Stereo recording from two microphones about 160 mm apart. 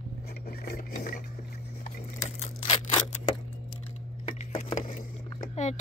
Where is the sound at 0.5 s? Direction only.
65° left (ahead or behind); by 2.5 s 50° left (ahead or behind).